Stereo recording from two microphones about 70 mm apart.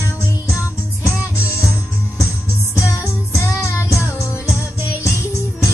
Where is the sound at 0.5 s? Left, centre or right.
Left.